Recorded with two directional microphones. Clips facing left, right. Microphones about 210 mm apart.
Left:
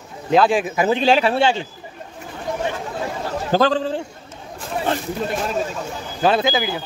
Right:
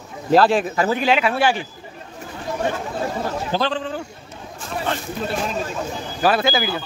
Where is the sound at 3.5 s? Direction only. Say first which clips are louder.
Left 7 dB; 40° left (ahead or behind).